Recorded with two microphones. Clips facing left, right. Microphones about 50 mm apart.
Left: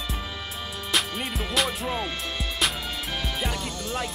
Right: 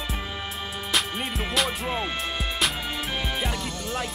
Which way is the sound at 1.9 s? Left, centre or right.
Centre.